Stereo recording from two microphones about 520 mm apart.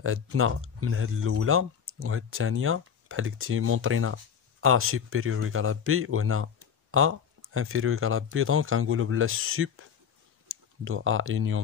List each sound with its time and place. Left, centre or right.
0.0 s speech: right